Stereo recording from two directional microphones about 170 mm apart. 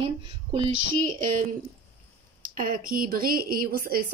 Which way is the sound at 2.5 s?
55° right (ahead or behind).